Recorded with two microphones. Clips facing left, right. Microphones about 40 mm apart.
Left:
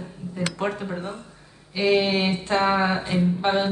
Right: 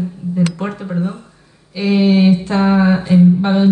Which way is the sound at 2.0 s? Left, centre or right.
Centre.